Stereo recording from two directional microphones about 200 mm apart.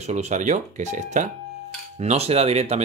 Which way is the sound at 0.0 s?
35° right (ahead or behind).